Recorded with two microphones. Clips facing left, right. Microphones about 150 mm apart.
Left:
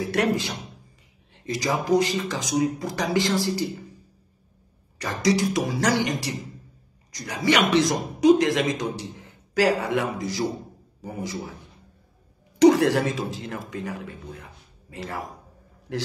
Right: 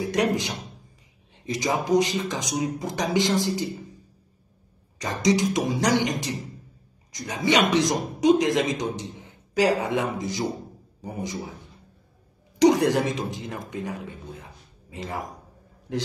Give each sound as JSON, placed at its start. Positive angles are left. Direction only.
{"t": 0.0, "sound": "speech", "side_deg": -15}
{"t": 5.2, "sound": "a man's voice", "side_deg": -20}
{"t": 12.5, "sound": "speech", "side_deg": -15}